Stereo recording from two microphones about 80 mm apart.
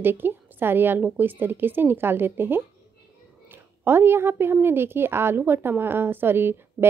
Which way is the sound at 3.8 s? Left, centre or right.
Right.